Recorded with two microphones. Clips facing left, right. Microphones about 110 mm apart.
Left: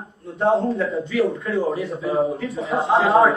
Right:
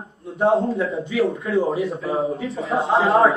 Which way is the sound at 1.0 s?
25° right (ahead or behind).